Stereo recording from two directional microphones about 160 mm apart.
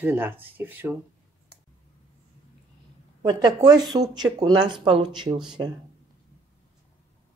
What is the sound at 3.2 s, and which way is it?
Speech, 25° right (ahead or behind).